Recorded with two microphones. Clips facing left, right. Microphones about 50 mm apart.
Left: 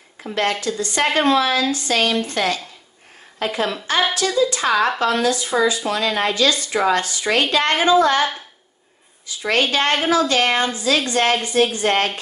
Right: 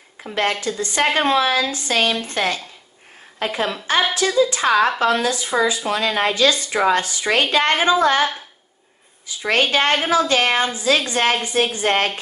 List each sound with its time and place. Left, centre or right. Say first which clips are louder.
0.2 s a woman's voice: even; right
3.4 s a woman's voice: even; centre
5.0 s a woman's voice: even; right
9.4 s a woman's voice: right 1 dB; right